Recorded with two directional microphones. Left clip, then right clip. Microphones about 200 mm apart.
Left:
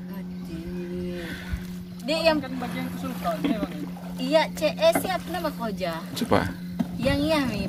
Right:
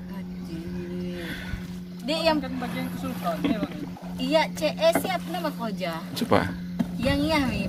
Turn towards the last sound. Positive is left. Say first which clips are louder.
# even
turn(degrees=0)  # may be behind; listen again after turning